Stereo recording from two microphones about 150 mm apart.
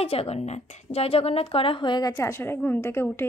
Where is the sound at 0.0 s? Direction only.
40° left (ahead or behind).